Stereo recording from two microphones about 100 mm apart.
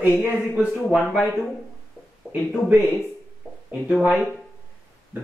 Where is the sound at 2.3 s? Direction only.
25° left (ahead or behind).